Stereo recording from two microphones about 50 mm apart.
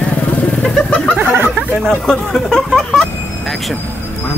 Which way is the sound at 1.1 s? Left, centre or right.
Right.